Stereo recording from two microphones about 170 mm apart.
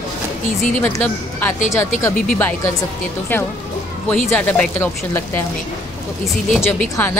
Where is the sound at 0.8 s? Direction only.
10° left (ahead or behind).